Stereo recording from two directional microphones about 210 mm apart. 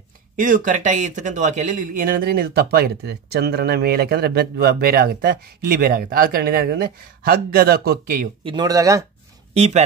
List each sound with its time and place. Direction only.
0.4 s speech: 35° right (ahead or behind)
8.5 s speech: 20° right (ahead or behind)
9.5 s speech: 30° right (ahead or behind)